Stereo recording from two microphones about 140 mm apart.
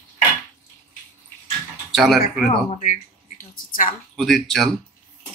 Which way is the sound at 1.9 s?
Centre (ahead or behind).